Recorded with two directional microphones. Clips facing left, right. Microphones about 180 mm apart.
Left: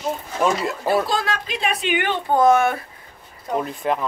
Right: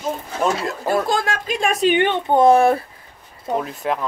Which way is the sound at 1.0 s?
45° right (ahead or behind).